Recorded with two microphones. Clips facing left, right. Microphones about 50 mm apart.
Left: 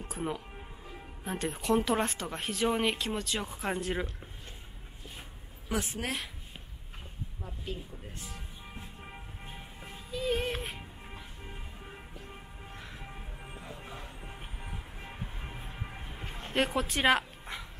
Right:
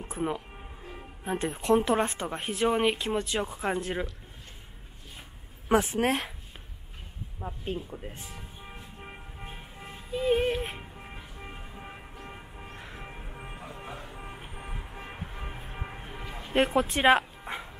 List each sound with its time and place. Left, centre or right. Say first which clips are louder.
0.0 s speech: right 4 dB; centre
5.7 s speech: right 9 dB; right
7.3 s speech: right 7 dB; right
8.6 s music: right 2 dB; centre
12.2 s vehicle: right 4 dB; right
12.7 s music: right 2 dB; right
16.5 s speech: right 5 dB; centre